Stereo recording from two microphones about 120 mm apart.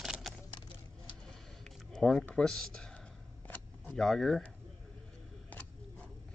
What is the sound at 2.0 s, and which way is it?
Speech, centre (ahead or behind).